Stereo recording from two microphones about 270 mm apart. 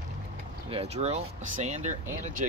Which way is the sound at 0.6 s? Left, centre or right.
Right.